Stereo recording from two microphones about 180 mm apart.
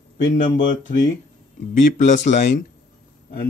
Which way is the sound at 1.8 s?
45° left (ahead or behind).